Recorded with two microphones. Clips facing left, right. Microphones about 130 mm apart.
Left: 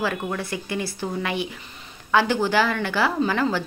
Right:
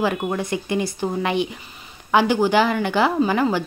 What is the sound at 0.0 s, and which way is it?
Speech, 20° right (ahead or behind).